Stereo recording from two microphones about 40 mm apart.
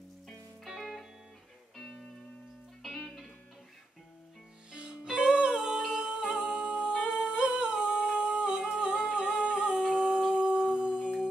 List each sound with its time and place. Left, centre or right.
0.7 s music: centre
4.7 s music: right
5.9 s humming: right